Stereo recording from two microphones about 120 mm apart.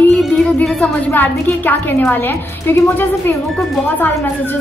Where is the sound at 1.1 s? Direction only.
15° left (ahead or behind).